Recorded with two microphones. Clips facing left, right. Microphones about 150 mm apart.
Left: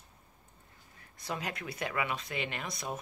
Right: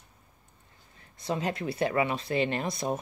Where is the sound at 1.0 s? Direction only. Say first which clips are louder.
Right 7 dB; 25° right (ahead or behind).